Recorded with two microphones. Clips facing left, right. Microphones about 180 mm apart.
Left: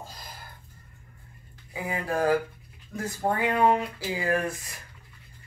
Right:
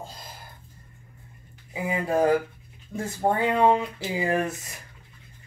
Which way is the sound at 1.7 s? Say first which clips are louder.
Right 4 dB; 20° right (ahead or behind).